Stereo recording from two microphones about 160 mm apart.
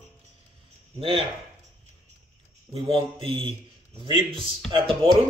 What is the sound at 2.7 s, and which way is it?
Speech, 35° right (ahead or behind).